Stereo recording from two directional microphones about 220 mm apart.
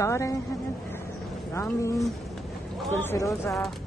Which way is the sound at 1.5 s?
15° left (ahead or behind).